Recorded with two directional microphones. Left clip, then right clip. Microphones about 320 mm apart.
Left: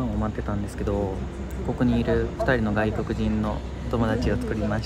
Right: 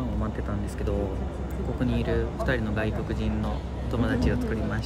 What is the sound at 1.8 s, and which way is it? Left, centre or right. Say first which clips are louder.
Speech: left 5 dB; centre.